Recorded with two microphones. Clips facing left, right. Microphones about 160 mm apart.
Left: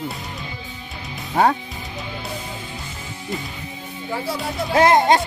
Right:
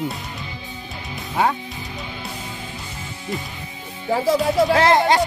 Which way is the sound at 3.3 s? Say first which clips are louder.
Right 1 dB; centre (ahead or behind).